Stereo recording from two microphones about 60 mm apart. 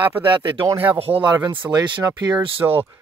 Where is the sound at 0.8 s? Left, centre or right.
Right.